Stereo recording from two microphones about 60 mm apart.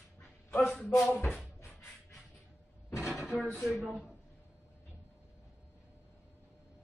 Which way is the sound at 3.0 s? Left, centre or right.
Centre.